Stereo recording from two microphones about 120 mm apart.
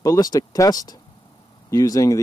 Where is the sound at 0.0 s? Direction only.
30° left (ahead or behind).